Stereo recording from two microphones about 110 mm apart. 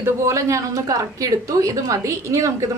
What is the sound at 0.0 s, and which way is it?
A woman's voice, 25° right (ahead or behind).